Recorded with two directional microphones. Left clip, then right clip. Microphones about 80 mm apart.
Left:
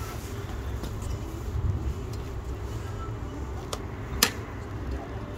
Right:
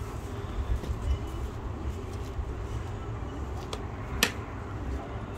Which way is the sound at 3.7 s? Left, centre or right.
Left.